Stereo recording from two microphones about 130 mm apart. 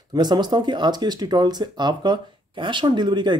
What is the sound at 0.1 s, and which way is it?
Speech, 30° right (ahead or behind).